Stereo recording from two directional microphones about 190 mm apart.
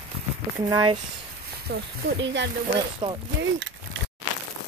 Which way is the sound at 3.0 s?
25° right (ahead or behind).